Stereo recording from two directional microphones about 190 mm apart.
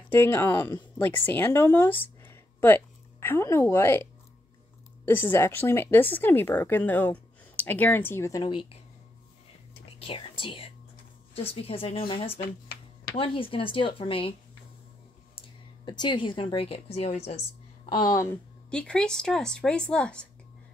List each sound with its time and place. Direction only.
0.1 s speech: 10° left (ahead or behind)
2.2 s a sound: 10° left (ahead or behind)
5.0 s speech: 10° left (ahead or behind)
9.9 s whispering: 30° left (ahead or behind)
11.4 s speech: 30° left (ahead or behind)
15.3 s speech: 25° left (ahead or behind)
17.8 s speech: 20° left (ahead or behind)
18.7 s speech: 5° left (ahead or behind)